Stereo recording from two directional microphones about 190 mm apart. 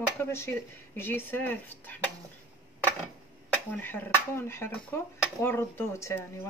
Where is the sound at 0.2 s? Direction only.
10° left (ahead or behind).